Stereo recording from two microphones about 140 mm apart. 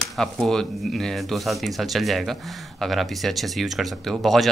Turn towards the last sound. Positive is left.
turn(degrees=0)  # may be behind; listen again after turning